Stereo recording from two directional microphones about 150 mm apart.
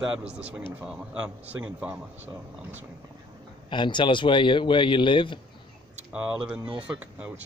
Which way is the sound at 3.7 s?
30° left (ahead or behind).